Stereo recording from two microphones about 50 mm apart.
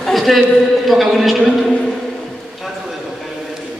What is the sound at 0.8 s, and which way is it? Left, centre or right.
Speech, centre.